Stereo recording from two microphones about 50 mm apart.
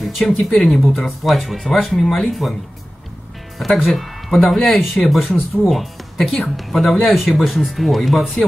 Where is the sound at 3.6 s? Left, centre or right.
Centre.